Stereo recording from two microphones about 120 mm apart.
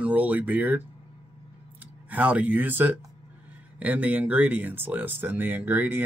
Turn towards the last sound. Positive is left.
turn(degrees=-15)  # may be behind; listen again after turning